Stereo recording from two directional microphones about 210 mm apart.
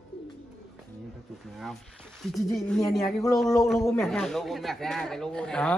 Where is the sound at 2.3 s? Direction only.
Centre (ahead or behind).